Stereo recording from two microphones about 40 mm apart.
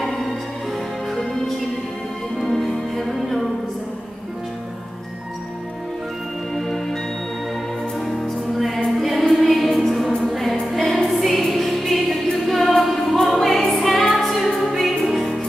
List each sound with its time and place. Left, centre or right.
0.0 s music: centre
2.4 s music: centre
6.5 s music: centre
8.1 s music: centre